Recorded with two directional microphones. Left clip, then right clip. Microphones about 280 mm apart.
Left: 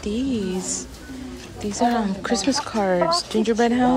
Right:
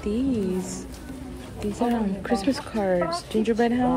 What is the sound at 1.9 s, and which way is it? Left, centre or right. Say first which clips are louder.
Speech: left 3 dB; centre.